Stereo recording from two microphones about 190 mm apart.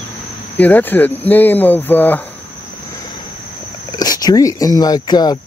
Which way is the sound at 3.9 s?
20° left (ahead or behind).